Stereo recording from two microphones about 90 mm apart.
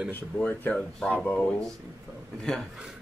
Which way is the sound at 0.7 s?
5° left (ahead or behind).